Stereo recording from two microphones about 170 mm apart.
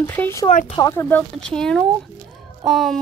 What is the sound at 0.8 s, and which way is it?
Speech, 20° left (ahead or behind).